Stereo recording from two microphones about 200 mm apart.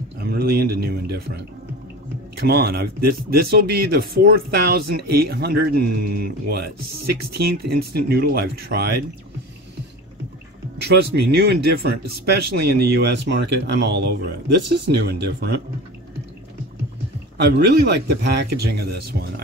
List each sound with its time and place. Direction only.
0.3 s speech: 50° right (ahead or behind)
10.8 s speech: 55° right (ahead or behind)
17.4 s speech: 55° right (ahead or behind)